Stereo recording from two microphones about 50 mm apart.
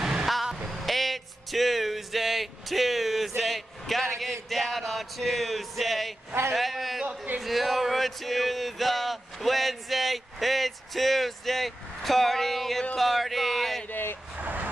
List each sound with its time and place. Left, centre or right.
0.0 s vehicle: centre
0.7 s a sound: centre
13.8 s vehicle: left
14.3 s vehicle: right